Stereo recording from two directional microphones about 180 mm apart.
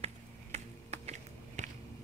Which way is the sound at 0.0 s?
35° right (ahead or behind).